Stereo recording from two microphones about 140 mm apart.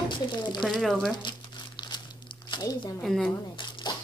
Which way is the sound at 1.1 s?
35° left (ahead or behind).